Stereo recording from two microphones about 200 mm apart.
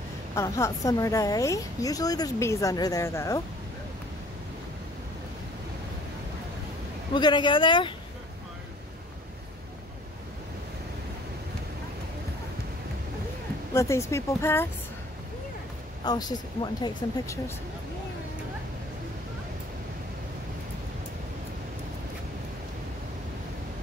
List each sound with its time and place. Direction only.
0.3 s a woman's voice: 15° left (ahead or behind)
7.2 s speech: 20° left (ahead or behind)
13.7 s a woman's voice: 15° left (ahead or behind)
16.1 s speech: 20° left (ahead or behind)